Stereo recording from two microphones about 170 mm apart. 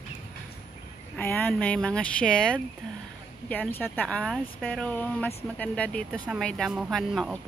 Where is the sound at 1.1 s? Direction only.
10° left (ahead or behind).